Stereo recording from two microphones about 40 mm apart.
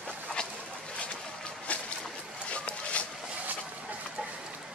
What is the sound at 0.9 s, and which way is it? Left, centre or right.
Boat, left.